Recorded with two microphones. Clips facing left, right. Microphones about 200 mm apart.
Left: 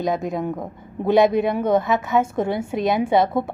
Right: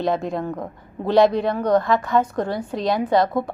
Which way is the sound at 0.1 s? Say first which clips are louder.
Even; 5° left (ahead or behind).